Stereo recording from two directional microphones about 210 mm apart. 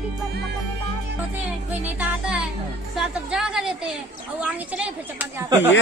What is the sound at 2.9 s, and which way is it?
Speech, 5° right (ahead or behind).